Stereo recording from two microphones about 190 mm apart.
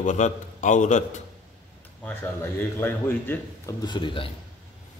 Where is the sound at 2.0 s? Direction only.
10° left (ahead or behind); by 4.3 s 25° left (ahead or behind).